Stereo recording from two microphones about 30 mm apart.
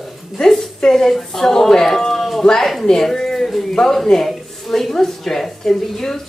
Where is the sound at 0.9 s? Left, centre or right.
Centre.